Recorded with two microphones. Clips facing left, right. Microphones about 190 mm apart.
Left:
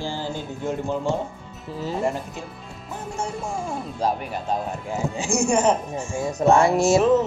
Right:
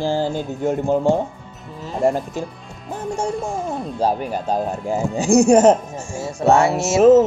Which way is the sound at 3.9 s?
35° right (ahead or behind).